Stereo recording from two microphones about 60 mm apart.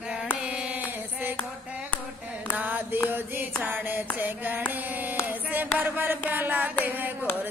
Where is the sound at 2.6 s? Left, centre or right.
Right.